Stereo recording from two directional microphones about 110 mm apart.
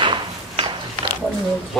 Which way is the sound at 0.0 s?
50° right (ahead or behind).